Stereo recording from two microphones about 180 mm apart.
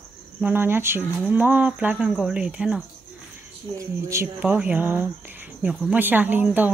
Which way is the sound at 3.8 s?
15° right (ahead or behind).